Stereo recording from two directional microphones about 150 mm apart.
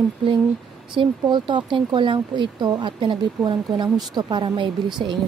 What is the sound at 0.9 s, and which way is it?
Speech, 30° right (ahead or behind).